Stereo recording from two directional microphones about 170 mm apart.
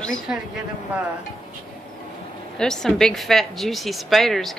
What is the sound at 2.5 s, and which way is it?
A woman's voice, 5° left (ahead or behind).